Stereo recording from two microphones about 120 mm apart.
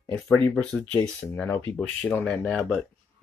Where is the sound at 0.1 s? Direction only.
10° left (ahead or behind).